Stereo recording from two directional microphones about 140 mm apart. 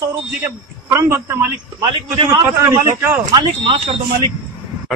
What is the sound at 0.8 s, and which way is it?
A man's voice, 20° right (ahead or behind).